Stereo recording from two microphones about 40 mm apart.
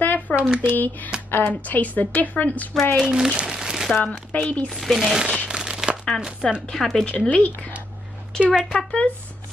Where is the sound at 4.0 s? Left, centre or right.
Left.